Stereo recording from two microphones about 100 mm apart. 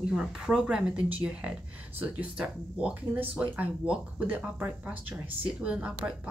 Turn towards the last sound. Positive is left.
turn(degrees=-10)  # may be behind; listen again after turning